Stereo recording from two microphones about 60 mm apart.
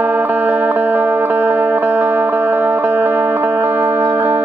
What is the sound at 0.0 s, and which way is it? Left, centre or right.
Music, right.